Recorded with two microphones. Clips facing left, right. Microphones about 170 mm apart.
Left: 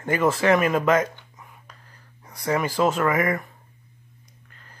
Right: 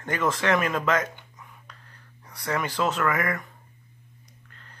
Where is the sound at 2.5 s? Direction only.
10° left (ahead or behind).